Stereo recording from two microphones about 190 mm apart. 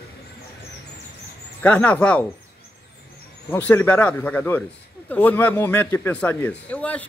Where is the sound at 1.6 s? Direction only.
10° left (ahead or behind).